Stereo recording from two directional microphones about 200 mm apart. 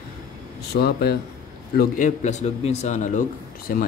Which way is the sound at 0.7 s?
50° left (ahead or behind).